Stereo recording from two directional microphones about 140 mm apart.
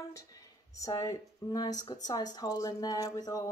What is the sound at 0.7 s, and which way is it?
Speech, 25° left (ahead or behind).